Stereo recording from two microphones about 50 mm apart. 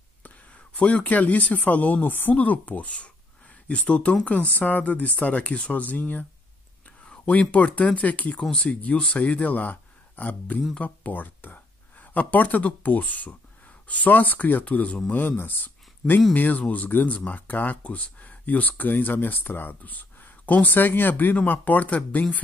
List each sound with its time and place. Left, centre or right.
0.7 s speech: left
8.5 s speech: centre
9.1 s speech: left
15.1 s speech: left